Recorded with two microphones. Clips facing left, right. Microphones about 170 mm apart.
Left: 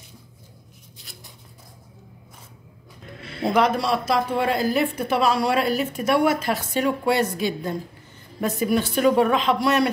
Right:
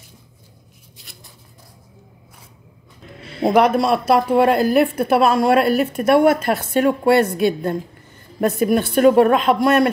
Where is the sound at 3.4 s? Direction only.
55° right (ahead or behind).